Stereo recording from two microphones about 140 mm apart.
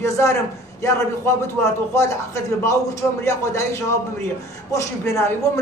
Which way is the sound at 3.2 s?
20° left (ahead or behind).